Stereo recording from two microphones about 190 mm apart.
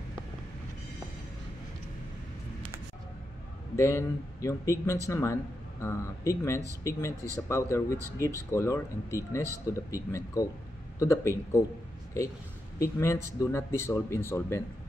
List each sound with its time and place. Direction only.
3.7 s a man's voice: 15° left (ahead or behind)
12.7 s a man's voice: 15° left (ahead or behind)